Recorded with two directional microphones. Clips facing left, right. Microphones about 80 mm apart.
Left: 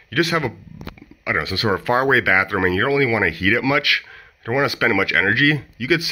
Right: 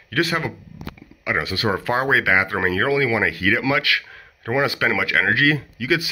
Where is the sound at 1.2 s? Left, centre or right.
Centre.